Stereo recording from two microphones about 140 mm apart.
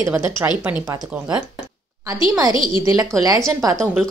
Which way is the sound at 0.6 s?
15° right (ahead or behind).